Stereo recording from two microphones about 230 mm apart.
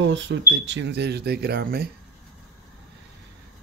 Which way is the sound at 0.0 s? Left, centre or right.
Right.